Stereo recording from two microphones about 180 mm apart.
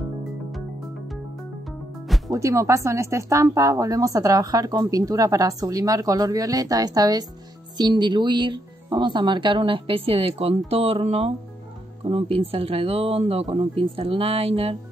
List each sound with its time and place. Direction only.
2.3 s speech: 15° right (ahead or behind); by 14.8 s 30° right (ahead or behind)